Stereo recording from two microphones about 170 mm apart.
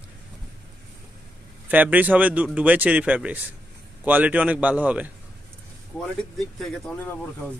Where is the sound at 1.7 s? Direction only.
10° right (ahead or behind).